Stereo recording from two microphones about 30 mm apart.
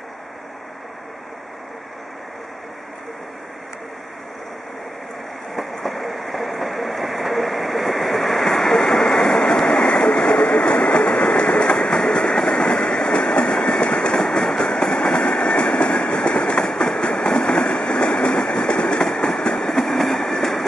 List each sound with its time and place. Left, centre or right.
5.9 s vehicle: centre
8.5 s train: centre
9.3 s vehicle: left
9.7 s train: left